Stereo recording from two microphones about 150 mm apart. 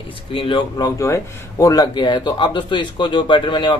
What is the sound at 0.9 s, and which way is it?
A man's voice, 20° left (ahead or behind).